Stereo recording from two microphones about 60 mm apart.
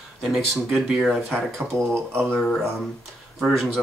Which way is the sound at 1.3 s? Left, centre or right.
Right.